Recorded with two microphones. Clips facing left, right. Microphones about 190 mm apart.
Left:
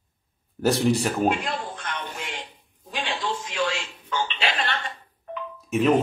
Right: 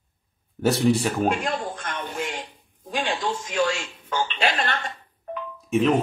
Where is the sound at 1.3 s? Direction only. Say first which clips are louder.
Right 2 dB; 45° right (ahead or behind).